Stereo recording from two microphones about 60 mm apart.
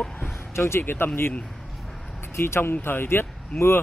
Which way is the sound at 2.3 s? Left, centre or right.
Left.